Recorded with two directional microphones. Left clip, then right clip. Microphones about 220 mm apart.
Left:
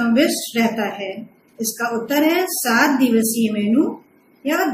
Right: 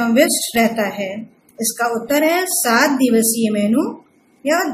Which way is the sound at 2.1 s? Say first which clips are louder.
Right 1 dB; 50° right (ahead or behind).